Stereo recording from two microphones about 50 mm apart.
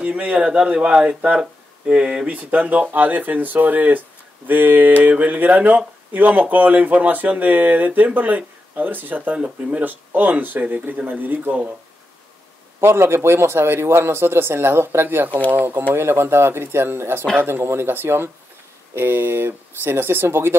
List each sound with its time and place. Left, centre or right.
0.0 s speech: right
2.2 s speech: right
12.8 s speech: right
15.9 s speech: right